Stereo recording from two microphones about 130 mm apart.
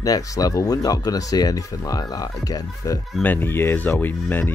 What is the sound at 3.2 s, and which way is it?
Speech, 15° left (ahead or behind).